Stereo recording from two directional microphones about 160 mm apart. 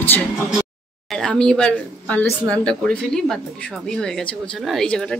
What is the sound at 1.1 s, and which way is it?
Speech, 5° left (ahead or behind).